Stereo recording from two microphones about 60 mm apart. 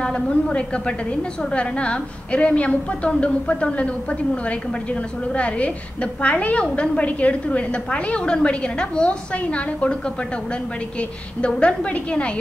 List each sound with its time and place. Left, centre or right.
0.0 s a woman's voice: centre